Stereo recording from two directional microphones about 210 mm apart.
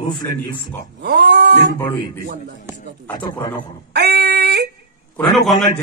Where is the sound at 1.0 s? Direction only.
50° right (ahead or behind).